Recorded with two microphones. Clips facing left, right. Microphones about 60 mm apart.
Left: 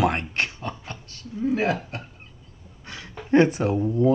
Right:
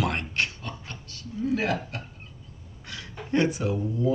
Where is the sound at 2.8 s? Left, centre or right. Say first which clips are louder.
Left 3 dB; left.